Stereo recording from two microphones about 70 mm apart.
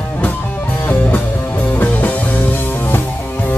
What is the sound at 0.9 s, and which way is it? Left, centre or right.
Music, left.